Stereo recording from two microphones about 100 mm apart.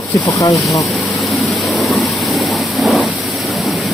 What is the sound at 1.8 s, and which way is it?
Rain, centre (ahead or behind).